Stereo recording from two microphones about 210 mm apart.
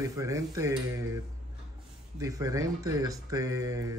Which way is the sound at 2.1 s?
15° right (ahead or behind).